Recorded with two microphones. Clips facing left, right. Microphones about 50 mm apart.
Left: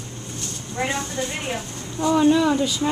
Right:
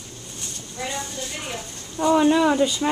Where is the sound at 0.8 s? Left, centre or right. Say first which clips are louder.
Left 5 dB; left.